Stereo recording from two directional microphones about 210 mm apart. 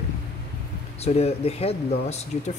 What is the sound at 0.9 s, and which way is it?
Speech, 30° left (ahead or behind).